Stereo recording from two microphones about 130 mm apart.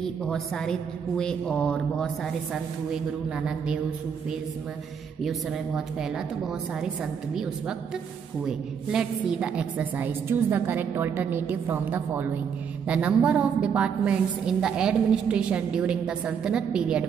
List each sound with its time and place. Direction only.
0.0 s a woman's voice: 5° left (ahead or behind)
2.5 s a woman's voice: 5° right (ahead or behind)
5.8 s a woman's voice: 5° right (ahead or behind)
8.5 s a woman's voice: 5° right (ahead or behind)